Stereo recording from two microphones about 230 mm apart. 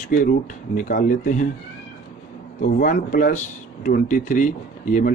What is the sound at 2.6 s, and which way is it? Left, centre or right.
Speech, left.